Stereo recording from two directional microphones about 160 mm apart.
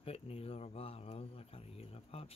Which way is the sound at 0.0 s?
40° left (ahead or behind).